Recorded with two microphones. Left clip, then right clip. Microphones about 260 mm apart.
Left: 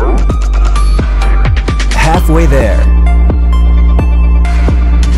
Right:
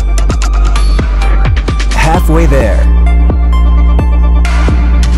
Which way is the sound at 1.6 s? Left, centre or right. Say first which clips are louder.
Even; centre.